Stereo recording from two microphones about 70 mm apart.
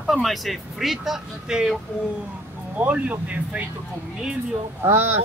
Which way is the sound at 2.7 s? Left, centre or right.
Right.